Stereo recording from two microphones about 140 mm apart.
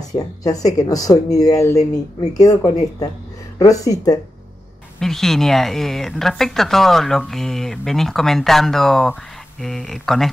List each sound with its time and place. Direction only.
0.4 s speech: 25° left (ahead or behind)
5.0 s a woman's voice: centre (ahead or behind)